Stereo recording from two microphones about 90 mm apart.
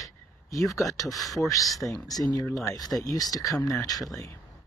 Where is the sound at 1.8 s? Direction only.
40° left (ahead or behind).